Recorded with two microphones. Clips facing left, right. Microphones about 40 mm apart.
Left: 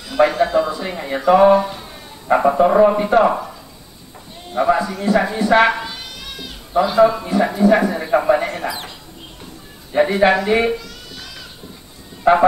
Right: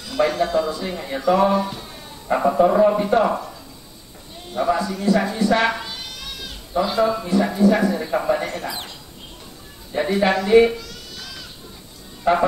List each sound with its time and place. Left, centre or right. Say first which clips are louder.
0.1 s speech: left 4 dB; centre
2.2 s a man's voice: left 3 dB; left
4.5 s a man's voice: left 4 dB; centre
5.8 s cat: left 3 dB; centre
6.8 s a man's voice: left 6 dB; centre
9.9 s a man's voice: left 5 dB; left
10.8 s a sound: left 1 dB; centre
12.2 s speech: left 5 dB; centre